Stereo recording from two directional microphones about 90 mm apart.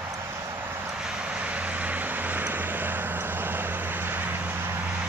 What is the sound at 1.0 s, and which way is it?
Vehicle, 10° right (ahead or behind).